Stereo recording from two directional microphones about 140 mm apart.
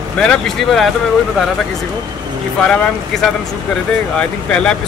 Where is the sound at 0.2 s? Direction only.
5° left (ahead or behind).